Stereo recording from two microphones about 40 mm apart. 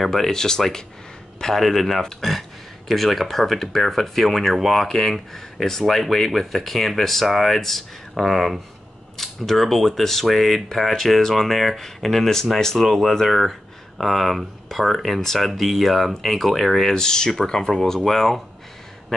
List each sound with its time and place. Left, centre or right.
0.0 s speech: centre
13.3 s speech: centre
16.9 s speech: centre